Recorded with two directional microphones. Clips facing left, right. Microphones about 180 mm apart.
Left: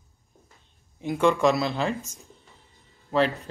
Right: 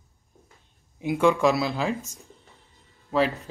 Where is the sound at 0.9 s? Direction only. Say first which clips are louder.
Right 1 dB; 5° right (ahead or behind).